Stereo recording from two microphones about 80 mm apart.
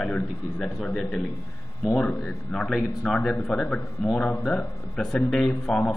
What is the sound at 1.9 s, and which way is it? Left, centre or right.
Speech, centre.